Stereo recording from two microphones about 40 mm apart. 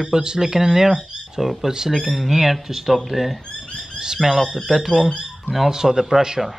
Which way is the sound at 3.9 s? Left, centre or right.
Centre.